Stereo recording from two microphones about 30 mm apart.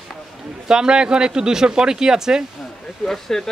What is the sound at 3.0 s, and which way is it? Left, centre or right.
Speech, centre.